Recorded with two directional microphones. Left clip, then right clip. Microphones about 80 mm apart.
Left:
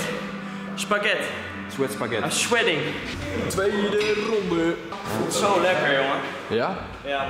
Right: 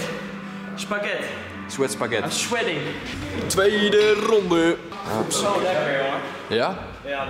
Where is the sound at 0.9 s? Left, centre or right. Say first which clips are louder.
Left 4 dB; centre.